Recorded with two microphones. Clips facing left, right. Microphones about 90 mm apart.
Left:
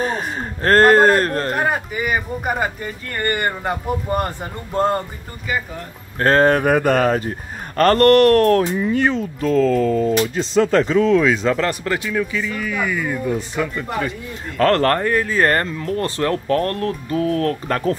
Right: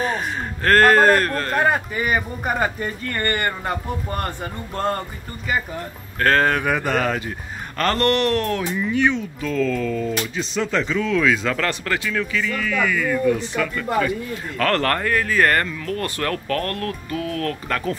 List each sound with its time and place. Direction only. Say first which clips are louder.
0.0 s speech: left 1 dB; 30° left (ahead or behind)
1.6 s speech: right 1 dB; 10° left (ahead or behind)
6.1 s speech: left 4 dB; 30° left (ahead or behind); by 8.6 s 50° left (ahead or behind)
8.7 s speech: left 2 dB; 35° left (ahead or behind)